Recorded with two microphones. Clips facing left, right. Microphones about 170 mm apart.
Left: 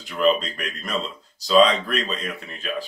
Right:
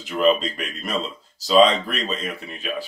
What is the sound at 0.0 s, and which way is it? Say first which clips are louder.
Speech: right 1 dB; centre (ahead or behind).